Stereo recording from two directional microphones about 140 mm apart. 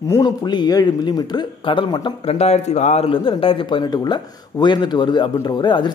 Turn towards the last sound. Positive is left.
turn(degrees=30)  # may be behind; listen again after turning